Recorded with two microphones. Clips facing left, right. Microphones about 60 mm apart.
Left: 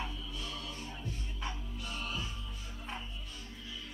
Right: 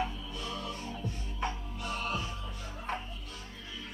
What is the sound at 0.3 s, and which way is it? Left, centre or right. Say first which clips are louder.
Music: right 4 dB; right.